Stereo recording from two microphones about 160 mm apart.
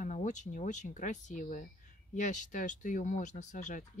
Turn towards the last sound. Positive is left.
turn(degrees=50)  # may be behind; listen again after turning